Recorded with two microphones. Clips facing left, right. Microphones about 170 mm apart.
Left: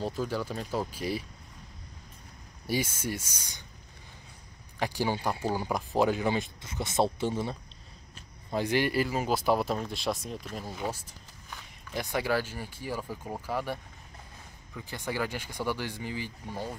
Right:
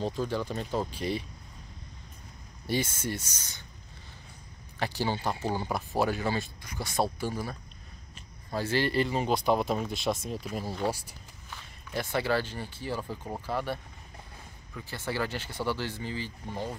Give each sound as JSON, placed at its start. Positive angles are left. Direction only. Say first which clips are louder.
{"t": 0.0, "sound": "speech", "louder": "right 1 dB", "side_deg": 5}
{"t": 2.6, "sound": "speech", "louder": "even", "side_deg": 10}
{"t": 4.7, "sound": "speech", "louder": "left 1 dB", "side_deg": 15}
{"t": 11.9, "sound": "speech", "louder": "right 1 dB", "side_deg": 15}
{"t": 14.8, "sound": "speech", "louder": "even", "side_deg": 15}